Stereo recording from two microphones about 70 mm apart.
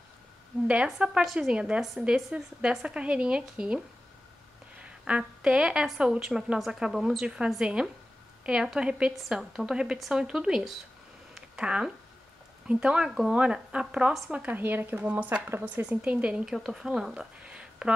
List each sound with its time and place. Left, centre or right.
0.8 s speech: centre
1.2 s a woman's voice: centre
1.5 s speech: centre
4.8 s speech: centre
9.4 s a woman's voice: centre
9.7 s a woman's voice: centre
11.3 s a sound: centre
12.6 s speech: centre